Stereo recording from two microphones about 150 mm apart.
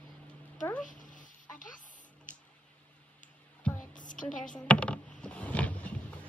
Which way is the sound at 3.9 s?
60° left (ahead or behind).